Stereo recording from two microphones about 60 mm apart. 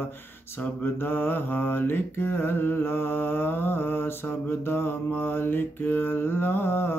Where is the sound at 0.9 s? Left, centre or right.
Left.